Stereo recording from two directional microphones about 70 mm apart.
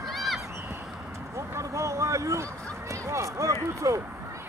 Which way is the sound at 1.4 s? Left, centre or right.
Right.